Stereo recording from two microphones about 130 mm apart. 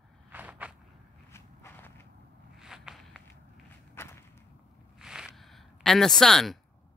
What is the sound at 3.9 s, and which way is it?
Thump, 20° left (ahead or behind).